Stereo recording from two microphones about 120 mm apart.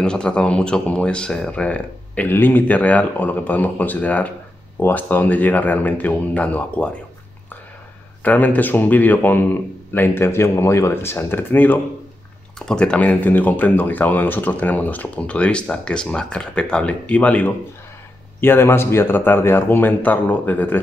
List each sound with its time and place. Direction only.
0.0 s speech: 5° left (ahead or behind)
8.2 s speech: 15° left (ahead or behind)